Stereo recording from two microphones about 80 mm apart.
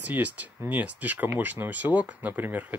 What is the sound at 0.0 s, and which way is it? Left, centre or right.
Speech, centre.